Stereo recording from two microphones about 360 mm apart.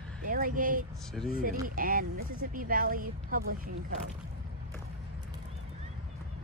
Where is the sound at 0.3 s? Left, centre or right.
Right.